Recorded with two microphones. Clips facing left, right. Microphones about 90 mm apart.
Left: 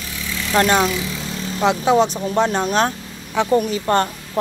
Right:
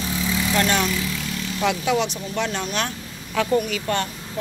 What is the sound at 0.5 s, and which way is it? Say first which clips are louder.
Speech: left 7 dB; 40° left (ahead or behind).